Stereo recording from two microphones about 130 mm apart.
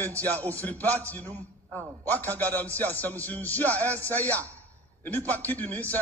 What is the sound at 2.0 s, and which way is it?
A man's voice, 15° left (ahead or behind).